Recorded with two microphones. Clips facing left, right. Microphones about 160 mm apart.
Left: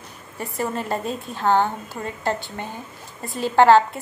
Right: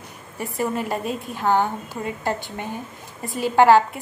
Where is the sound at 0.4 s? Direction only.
10° right (ahead or behind).